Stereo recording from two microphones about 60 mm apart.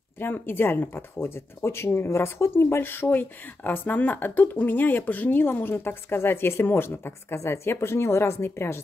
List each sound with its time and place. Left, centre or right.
0.2 s speech: left